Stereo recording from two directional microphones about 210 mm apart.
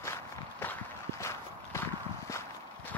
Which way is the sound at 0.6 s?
10° left (ahead or behind).